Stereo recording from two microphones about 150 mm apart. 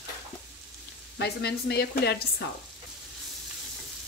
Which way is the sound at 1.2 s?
90° left.